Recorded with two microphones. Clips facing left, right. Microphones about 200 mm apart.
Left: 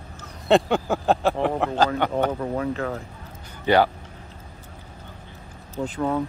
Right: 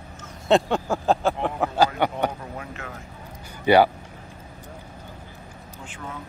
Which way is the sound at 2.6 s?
35° left (ahead or behind).